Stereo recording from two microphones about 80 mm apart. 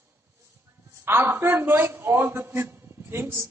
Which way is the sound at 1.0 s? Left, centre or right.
Right.